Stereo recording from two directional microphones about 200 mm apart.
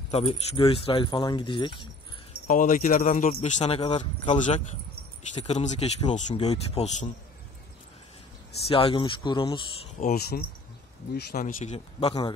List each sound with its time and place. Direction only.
0.1 s speech: 30° left (ahead or behind)
2.4 s speech: 40° left (ahead or behind)
8.6 s speech: 30° left (ahead or behind)
9.9 s speech: 45° left (ahead or behind); by 12.4 s 25° left (ahead or behind)